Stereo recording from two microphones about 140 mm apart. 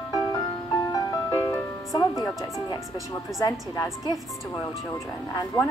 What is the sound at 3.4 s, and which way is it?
Speech, 25° left (ahead or behind).